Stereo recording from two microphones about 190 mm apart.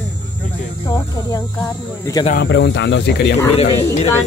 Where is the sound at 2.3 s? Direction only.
65° left (ahead or behind).